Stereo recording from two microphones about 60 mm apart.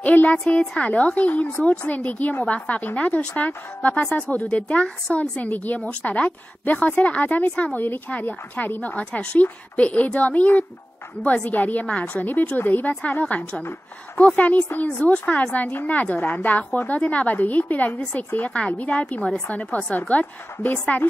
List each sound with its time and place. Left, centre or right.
0.0 s a woman's voice: left
5.4 s a woman's voice: left